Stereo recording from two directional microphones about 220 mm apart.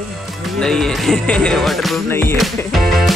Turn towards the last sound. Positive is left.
turn(degrees=0)  # may be behind; listen again after turning